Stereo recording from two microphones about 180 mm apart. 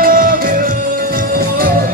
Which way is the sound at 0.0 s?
50° right (ahead or behind).